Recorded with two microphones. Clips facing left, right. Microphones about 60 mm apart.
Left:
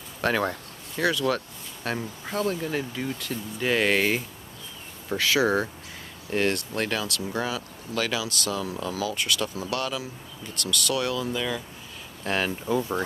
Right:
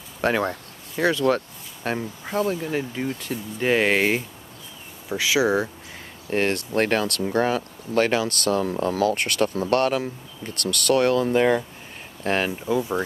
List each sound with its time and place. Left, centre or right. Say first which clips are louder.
0.2 s speech: right 3 dB; centre
0.9 s speech: right 4 dB; right
5.1 s speech: right 2 dB; centre
6.3 s speech: right 3 dB; right
12.2 s speech: right 4 dB; right
12.4 s speech: right 2 dB; centre